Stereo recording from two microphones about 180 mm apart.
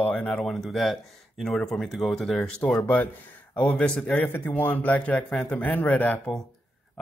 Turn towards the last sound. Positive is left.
turn(degrees=0)  # may be behind; listen again after turning